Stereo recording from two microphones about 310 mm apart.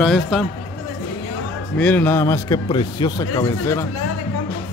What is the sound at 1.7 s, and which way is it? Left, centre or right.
Speech, centre.